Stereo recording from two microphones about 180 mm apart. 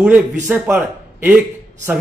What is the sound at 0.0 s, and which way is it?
Speech, 10° right (ahead or behind).